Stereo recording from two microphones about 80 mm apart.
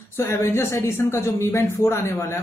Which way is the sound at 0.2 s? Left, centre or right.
Left.